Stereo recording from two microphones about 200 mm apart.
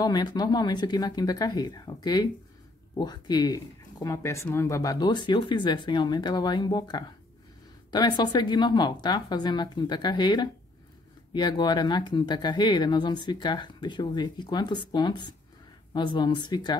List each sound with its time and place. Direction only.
0.0 s speech: 20° left (ahead or behind)